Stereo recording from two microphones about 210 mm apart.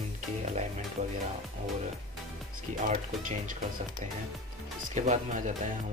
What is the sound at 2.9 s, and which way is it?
Speech, 40° right (ahead or behind).